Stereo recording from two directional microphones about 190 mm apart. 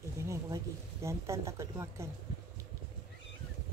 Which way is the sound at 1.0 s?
15° right (ahead or behind).